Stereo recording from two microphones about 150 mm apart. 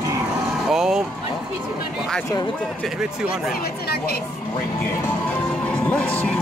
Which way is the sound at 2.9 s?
5° right (ahead or behind).